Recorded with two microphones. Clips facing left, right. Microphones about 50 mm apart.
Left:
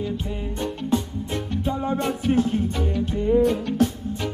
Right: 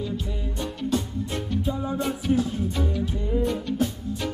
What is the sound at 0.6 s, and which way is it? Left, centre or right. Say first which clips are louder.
Music: left 2 dB; left.